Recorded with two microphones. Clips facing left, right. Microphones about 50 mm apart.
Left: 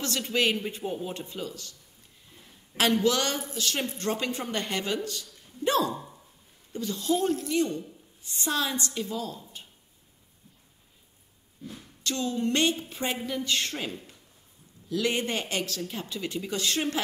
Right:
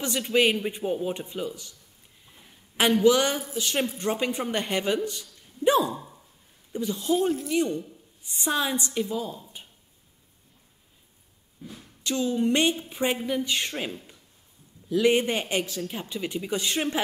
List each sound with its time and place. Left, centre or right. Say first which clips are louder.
0.0 s a man's voice: right 4 dB; centre
2.8 s a man's voice: right 4 dB; centre
3.6 s a man's voice: right 3 dB; centre
5.9 s a sound: even; centre
6.7 s a man's voice: right 2 dB; centre
11.6 s a man's voice: even; centre